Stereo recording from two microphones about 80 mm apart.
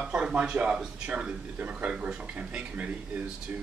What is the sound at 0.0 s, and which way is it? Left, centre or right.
Speech, centre.